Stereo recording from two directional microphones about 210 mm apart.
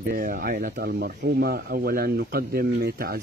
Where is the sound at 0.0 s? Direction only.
45° right (ahead or behind).